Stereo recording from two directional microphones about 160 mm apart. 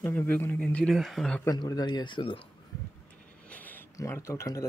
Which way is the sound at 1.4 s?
20° left (ahead or behind).